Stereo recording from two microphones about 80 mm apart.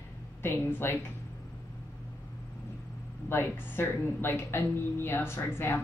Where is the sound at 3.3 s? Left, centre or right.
Left.